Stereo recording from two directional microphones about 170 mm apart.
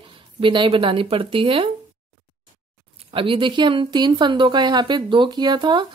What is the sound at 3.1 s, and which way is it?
Speech, 30° right (ahead or behind).